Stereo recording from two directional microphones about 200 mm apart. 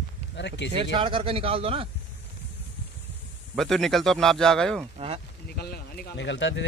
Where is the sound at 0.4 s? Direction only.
60° left (ahead or behind).